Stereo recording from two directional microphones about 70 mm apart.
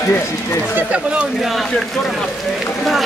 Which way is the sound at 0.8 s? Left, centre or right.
Centre.